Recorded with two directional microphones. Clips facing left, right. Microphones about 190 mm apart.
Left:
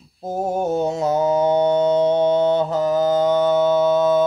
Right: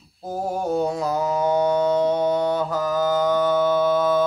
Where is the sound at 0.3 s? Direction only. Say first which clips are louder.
Left 3 dB; 25° left (ahead or behind).